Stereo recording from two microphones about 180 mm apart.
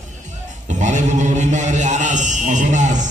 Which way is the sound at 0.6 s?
45° right (ahead or behind).